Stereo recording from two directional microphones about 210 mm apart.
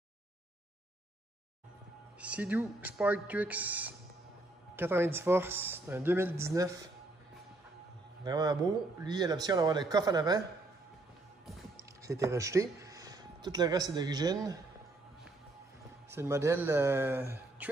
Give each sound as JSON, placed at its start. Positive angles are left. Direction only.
{"t": 2.1, "sound": "speech", "side_deg": -5}
{"t": 8.2, "sound": "a man's voice", "side_deg": -20}
{"t": 11.7, "sound": "speech", "side_deg": -15}
{"t": 16.1, "sound": "speech", "side_deg": -10}